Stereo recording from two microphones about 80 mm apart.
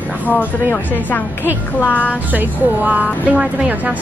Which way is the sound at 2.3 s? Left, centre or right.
Right.